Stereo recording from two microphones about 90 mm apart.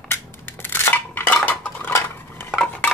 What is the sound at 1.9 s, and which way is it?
Dishes, 30° left (ahead or behind).